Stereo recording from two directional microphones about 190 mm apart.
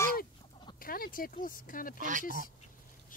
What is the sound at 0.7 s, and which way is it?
Speech, 50° left (ahead or behind).